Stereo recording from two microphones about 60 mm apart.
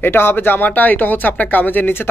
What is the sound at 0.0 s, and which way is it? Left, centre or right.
Speech, left.